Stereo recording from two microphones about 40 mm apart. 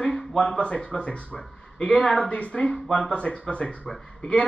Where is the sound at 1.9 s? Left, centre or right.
Centre.